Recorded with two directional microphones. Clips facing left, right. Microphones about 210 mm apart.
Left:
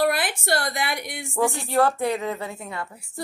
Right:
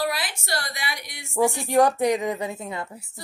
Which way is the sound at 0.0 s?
55° left (ahead or behind).